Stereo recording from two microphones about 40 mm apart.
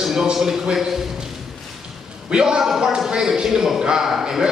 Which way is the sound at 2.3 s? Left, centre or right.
Centre.